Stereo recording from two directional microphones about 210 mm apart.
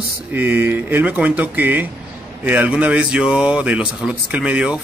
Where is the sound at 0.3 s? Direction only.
10° right (ahead or behind).